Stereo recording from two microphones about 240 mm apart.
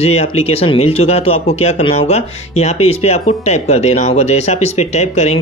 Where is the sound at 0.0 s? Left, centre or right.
Left.